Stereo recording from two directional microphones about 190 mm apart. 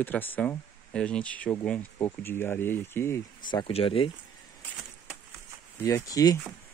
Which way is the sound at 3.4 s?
25° left (ahead or behind).